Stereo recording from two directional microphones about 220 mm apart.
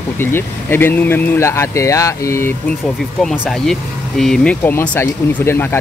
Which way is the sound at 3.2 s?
Centre (ahead or behind).